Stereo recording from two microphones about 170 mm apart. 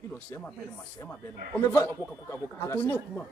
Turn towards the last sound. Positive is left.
turn(degrees=15)  # may be behind; listen again after turning